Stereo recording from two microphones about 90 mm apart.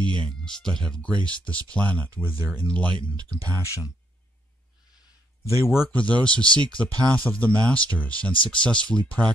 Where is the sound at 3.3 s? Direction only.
45° right (ahead or behind).